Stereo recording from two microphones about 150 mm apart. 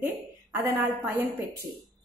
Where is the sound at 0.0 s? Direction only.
20° right (ahead or behind).